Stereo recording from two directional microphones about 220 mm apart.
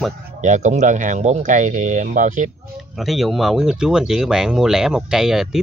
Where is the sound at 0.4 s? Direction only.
35° right (ahead or behind).